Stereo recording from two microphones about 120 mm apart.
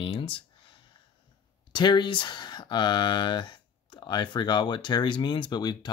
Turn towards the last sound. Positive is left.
turn(degrees=35)  # may be behind; listen again after turning